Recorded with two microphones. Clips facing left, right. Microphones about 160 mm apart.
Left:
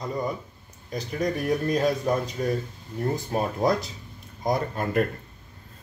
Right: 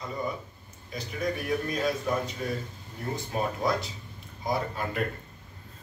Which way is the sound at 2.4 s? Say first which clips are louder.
Left 6 dB; 45° left (ahead or behind).